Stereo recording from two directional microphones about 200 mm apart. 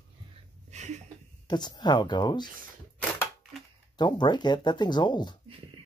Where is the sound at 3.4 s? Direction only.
Centre (ahead or behind).